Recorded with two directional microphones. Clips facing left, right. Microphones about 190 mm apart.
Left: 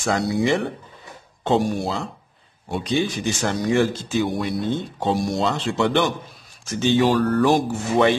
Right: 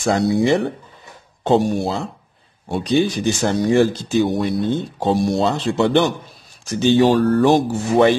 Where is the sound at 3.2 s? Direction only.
35° right (ahead or behind).